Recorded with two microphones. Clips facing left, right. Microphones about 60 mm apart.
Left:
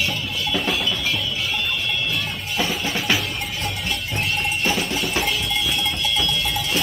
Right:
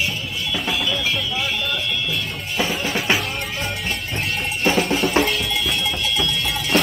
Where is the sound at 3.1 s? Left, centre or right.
Right.